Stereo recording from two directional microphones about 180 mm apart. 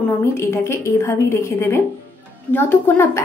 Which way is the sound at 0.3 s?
15° left (ahead or behind).